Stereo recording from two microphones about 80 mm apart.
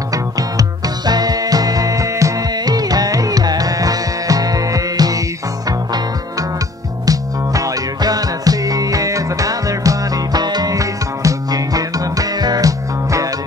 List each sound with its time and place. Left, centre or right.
0.1 s music: right
2.5 s music: right
7.1 s music: right